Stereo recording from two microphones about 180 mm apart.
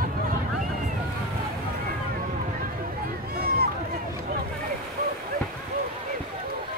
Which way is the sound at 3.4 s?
55° right (ahead or behind).